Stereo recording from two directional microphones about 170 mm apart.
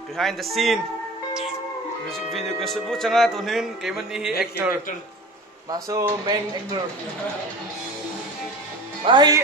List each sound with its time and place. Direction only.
0.2 s speech: centre (ahead or behind)
2.0 s speech: centre (ahead or behind)
5.7 s speech: 20° right (ahead or behind)
9.0 s speech: 25° right (ahead or behind)